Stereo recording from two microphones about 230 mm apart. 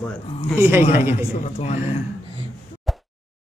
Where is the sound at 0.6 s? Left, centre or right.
Centre.